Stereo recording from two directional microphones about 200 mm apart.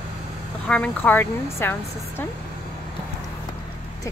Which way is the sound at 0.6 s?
5° left (ahead or behind).